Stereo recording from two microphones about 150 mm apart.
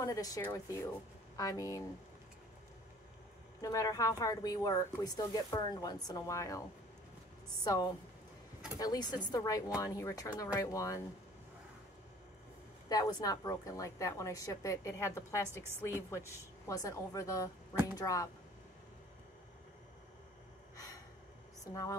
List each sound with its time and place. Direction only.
0.0 s speech: 20° left (ahead or behind)
3.6 s speech: 20° left (ahead or behind)
7.6 s speech: 25° left (ahead or behind)
12.8 s speech: 25° left (ahead or behind)
20.7 s gasp: 25° left (ahead or behind)